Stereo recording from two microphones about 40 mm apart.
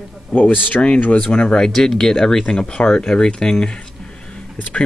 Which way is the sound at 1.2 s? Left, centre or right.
Left.